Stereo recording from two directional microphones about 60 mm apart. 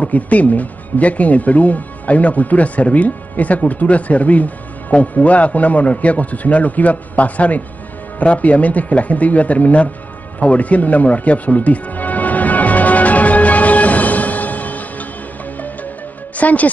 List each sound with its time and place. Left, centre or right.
0.0 s speech: left
10.4 s music: left
16.3 s speech: left